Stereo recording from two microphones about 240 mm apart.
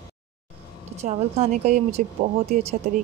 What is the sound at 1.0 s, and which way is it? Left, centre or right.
A woman's voice, right.